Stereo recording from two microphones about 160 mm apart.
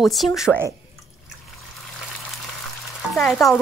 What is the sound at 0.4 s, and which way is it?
Stir, 10° right (ahead or behind).